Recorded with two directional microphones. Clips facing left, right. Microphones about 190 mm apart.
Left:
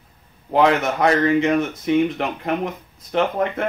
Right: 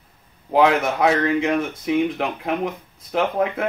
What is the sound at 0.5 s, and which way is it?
Speech, centre (ahead or behind).